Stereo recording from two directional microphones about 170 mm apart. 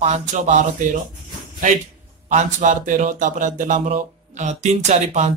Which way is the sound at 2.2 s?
50° right (ahead or behind).